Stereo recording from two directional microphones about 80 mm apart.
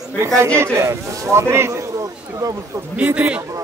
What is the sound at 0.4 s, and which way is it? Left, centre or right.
Speech, right.